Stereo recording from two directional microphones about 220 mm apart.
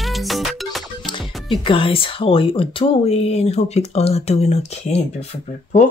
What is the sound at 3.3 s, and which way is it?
Speech, 30° left (ahead or behind).